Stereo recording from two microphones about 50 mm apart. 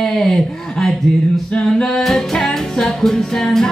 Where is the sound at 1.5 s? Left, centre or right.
Centre.